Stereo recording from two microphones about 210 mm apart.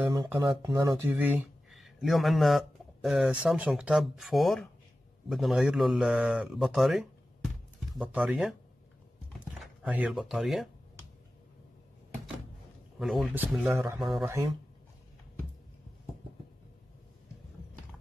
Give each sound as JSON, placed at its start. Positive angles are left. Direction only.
{"t": 0.4, "sound": "speech", "side_deg": -20}
{"t": 13.0, "sound": "speech", "side_deg": 0}